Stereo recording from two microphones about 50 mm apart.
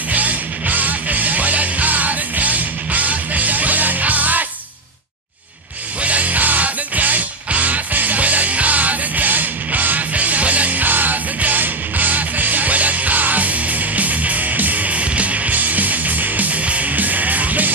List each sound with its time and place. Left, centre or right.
0.1 s music: right
6.0 s music: right